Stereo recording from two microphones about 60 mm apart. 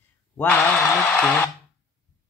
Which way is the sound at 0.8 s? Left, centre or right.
Left.